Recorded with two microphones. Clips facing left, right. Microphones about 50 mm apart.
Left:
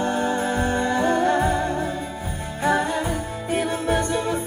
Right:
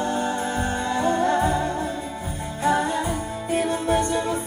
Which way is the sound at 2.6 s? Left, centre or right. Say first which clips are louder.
Even; left.